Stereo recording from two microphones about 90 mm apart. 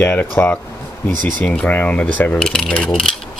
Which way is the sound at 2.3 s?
5° left (ahead or behind).